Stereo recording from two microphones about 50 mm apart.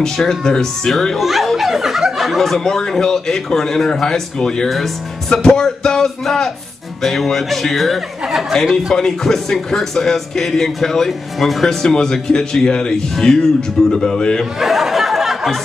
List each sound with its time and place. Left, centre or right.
0.0 s speech: centre
8.9 s speech: centre
14.6 s a sound: centre